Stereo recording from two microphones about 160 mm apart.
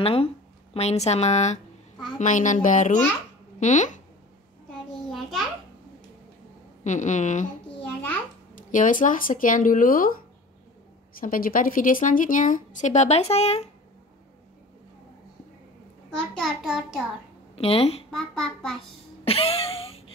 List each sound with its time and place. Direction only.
0.0 s a woman's voice: 35° left (ahead or behind)
4.6 s a sound: centre (ahead or behind)
6.8 s a woman's voice: 50° left (ahead or behind)
8.5 s speech: 55° left (ahead or behind)
11.1 s speech: 60° left (ahead or behind); by 13.7 s 40° left (ahead or behind)
16.2 s a child's voice: centre (ahead or behind)
17.6 s a woman's voice: 40° left (ahead or behind)
18.1 s a child's voice: 5° left (ahead or behind)
19.2 s a sound: 35° left (ahead or behind)